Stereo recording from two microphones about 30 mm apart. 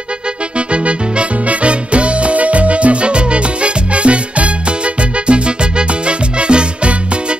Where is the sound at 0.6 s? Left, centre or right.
Right.